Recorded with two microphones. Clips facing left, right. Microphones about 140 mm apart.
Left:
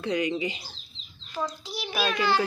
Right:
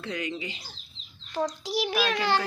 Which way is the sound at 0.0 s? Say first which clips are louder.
Left 6 dB; 15° left (ahead or behind).